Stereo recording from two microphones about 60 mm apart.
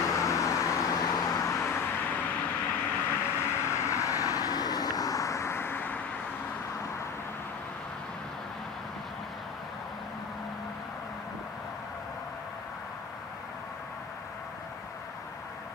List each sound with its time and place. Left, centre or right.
0.0 s vehicle: left
3.2 s vehicle: left